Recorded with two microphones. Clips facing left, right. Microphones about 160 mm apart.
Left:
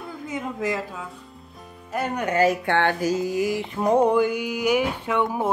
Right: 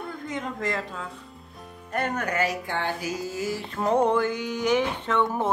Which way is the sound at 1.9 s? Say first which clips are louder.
Left 1 dB; 5° left (ahead or behind).